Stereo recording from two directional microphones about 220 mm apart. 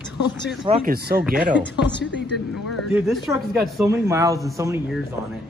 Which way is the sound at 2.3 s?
Centre (ahead or behind).